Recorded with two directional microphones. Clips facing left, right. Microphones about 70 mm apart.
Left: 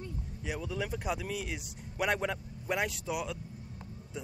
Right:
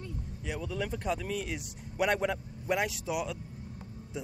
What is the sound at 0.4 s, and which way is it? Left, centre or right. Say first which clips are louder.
A man's voice: right 1 dB; centre.